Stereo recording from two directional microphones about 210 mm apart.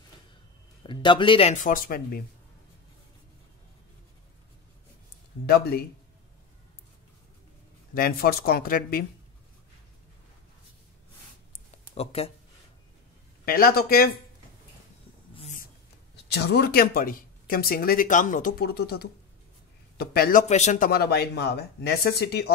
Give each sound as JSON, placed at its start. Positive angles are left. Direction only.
{"t": 0.8, "sound": "speech", "side_deg": 25}
{"t": 7.9, "sound": "speech", "side_deg": 45}
{"t": 11.7, "sound": "a sound", "side_deg": 30}
{"t": 13.5, "sound": "speech", "side_deg": 45}
{"t": 15.3, "sound": "a sound", "side_deg": 30}
{"t": 16.3, "sound": "speech", "side_deg": 50}